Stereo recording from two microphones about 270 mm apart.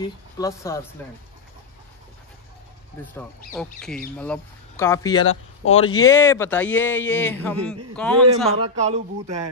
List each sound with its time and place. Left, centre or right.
0.4 s speech: centre
3.5 s a man's voice: centre
5.2 s speech: left
6.0 s a man's voice: centre
8.5 s speech: right